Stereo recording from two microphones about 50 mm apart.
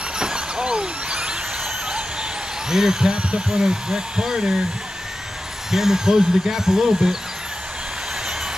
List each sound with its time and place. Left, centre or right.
0.2 s a sound: centre
2.7 s speech: centre
5.7 s speech: centre